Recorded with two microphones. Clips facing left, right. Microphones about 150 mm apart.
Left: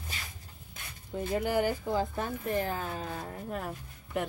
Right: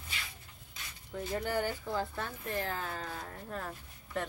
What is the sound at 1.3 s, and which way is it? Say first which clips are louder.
Speech: left 5 dB; 10° left (ahead or behind).